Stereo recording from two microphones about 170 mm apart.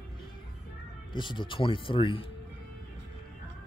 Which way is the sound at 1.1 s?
25° left (ahead or behind).